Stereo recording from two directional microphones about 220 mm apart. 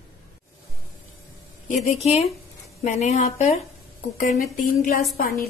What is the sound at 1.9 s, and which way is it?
A woman's voice, 30° left (ahead or behind).